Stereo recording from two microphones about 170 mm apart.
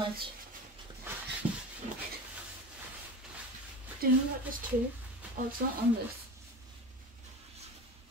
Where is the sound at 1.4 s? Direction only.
10° right (ahead or behind).